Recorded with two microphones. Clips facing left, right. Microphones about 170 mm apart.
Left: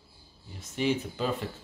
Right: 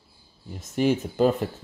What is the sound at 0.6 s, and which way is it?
Speech, 45° right (ahead or behind).